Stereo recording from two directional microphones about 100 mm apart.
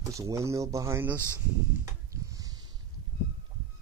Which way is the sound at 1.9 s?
40° right (ahead or behind).